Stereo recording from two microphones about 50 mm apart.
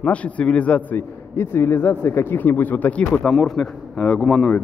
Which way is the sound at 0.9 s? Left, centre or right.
Left.